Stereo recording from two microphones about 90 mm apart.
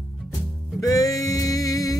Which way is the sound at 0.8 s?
45° left (ahead or behind).